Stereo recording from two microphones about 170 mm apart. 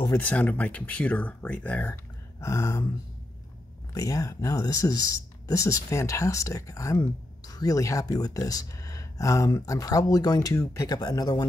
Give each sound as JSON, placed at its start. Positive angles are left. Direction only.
{"t": 0.2, "sound": "speech", "side_deg": 10}
{"t": 3.9, "sound": "speech", "side_deg": 20}